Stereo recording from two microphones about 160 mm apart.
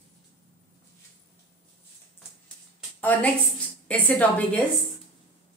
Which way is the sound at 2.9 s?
10° left (ahead or behind).